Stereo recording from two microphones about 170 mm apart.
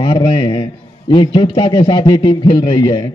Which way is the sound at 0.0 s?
30° left (ahead or behind).